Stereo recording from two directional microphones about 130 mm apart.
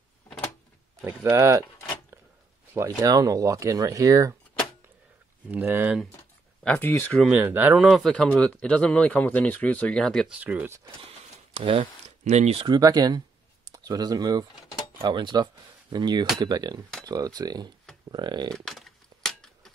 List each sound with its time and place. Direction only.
1.0 s speech: 25° right (ahead or behind)
2.7 s speech: 25° right (ahead or behind)
5.5 s speech: 15° right (ahead or behind)
6.6 s speech: 15° left (ahead or behind)
7.2 s speech: 15° right (ahead or behind); by 10.2 s 5° left (ahead or behind)
10.2 s speech: 10° right (ahead or behind)
11.5 s speech: 45° right (ahead or behind)
12.3 s speech: 55° right (ahead or behind)
12.6 s speech: 30° right (ahead or behind)
18.5 s a sound: 5° left (ahead or behind)